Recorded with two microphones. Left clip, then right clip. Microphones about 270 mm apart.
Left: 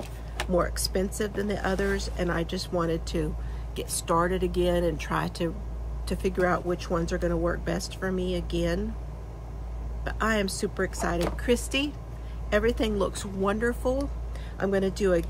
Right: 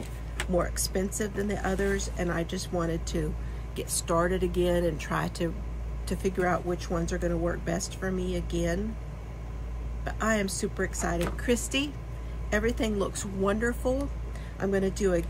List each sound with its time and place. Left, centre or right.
0.5 s speech: centre
10.0 s speech: centre